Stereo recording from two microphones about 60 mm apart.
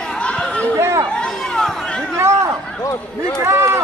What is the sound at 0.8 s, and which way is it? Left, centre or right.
Chatter, right.